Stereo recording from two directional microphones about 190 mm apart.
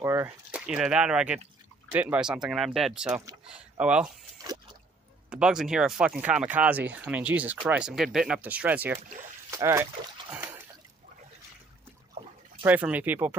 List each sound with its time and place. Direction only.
0.0 s speech: 10° right (ahead or behind)
4.4 s a sound: 20° right (ahead or behind)
5.3 s speech: 5° right (ahead or behind)
10.3 s splash: 10° right (ahead or behind)
12.6 s speech: 10° right (ahead or behind)